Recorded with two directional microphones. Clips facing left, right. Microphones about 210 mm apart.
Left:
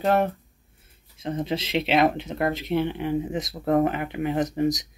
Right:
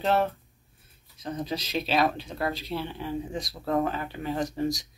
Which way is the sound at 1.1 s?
25° left (ahead or behind).